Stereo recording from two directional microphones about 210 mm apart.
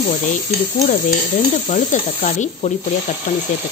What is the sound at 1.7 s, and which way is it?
A woman's voice, 35° left (ahead or behind).